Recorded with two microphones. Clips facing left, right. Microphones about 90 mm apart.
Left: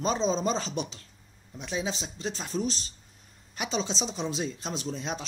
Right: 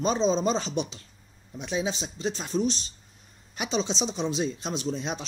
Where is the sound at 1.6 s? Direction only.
10° right (ahead or behind).